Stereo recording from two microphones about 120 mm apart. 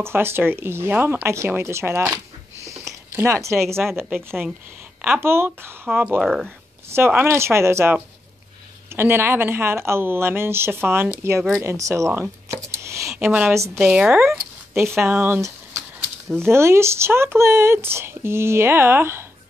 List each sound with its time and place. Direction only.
0.0 s speech: 20° right (ahead or behind)
5.9 s speech: 10° right (ahead or behind)
6.9 s speech: 15° right (ahead or behind)
12.1 s a sound: 20° right (ahead or behind)
13.2 s a woman's voice: 15° right (ahead or behind)